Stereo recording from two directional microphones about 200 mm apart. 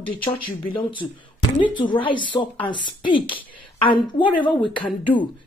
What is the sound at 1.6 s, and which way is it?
Speech, 25° left (ahead or behind).